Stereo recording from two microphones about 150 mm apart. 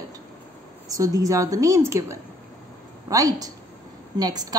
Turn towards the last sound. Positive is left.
turn(degrees=-25)  # may be behind; listen again after turning